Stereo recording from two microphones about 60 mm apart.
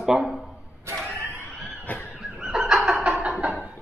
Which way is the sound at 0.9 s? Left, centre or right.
Centre.